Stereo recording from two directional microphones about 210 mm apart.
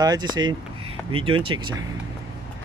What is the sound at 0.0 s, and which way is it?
Speech, 20° right (ahead or behind).